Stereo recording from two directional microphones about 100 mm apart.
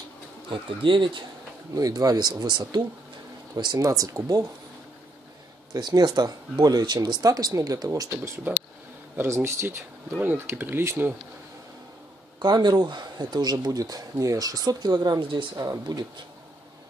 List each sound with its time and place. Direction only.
0.5 s speech: 55° right (ahead or behind)
1.8 s speech: 40° right (ahead or behind)
5.7 s speech: 45° right (ahead or behind)
9.1 s speech: 25° right (ahead or behind)
12.4 s speech: 45° right (ahead or behind)